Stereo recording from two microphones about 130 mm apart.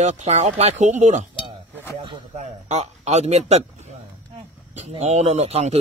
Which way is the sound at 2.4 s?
60° right (ahead or behind).